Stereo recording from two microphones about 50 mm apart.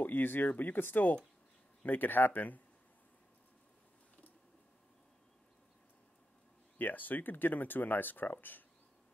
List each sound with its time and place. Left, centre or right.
0.0 s speech: left
6.8 s speech: left